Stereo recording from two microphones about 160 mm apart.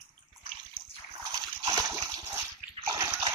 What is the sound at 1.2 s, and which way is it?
Splash, 25° right (ahead or behind).